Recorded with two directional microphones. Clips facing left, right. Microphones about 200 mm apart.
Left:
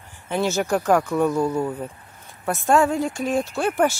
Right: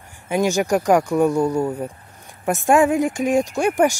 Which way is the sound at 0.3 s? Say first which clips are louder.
Right 3 dB; 15° right (ahead or behind).